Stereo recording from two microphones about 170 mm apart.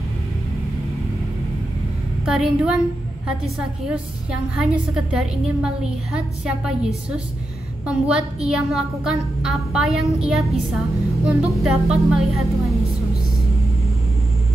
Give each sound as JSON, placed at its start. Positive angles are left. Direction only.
{"t": 2.2, "sound": "a woman's voice", "side_deg": -5}